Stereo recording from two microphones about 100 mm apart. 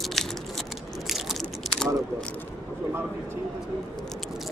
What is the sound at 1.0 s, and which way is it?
Biting, centre (ahead or behind).